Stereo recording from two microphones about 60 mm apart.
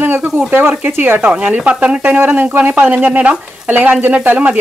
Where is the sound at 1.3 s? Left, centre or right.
Right.